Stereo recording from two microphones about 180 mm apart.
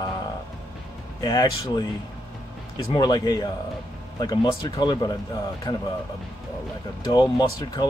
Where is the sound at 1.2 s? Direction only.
20° left (ahead or behind).